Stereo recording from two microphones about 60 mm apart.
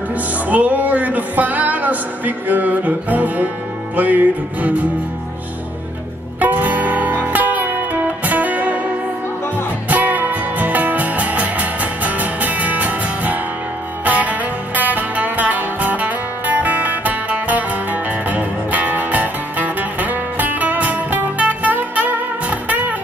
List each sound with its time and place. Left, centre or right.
0.1 s music: right
6.4 s music: right
9.8 s music: right